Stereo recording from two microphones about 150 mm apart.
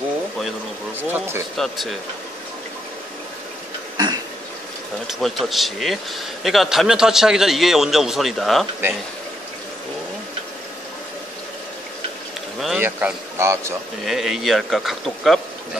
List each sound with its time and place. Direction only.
1.1 s speech: 15° right (ahead or behind)
1.6 s a man's voice: centre (ahead or behind)
3.9 s cough: 25° right (ahead or behind)
5.0 s a man's voice: centre (ahead or behind)
12.5 s speech: centre (ahead or behind)
12.8 s speech: 15° right (ahead or behind)
14.0 s a man's voice: centre (ahead or behind)